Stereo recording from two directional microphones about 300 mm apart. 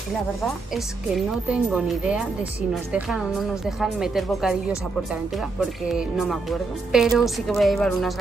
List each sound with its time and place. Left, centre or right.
1.1 s speech: centre
5.6 s speech: centre